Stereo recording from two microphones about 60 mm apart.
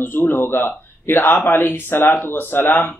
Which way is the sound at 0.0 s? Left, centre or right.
Left.